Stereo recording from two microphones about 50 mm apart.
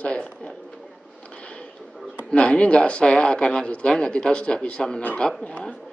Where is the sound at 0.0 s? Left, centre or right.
Left.